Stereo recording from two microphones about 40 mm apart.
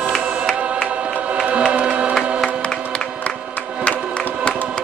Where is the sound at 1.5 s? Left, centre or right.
Right.